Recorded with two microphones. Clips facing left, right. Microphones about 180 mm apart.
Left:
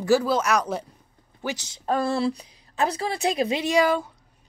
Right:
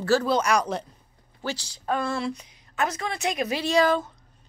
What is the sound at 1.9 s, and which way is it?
A woman's voice, 35° left (ahead or behind).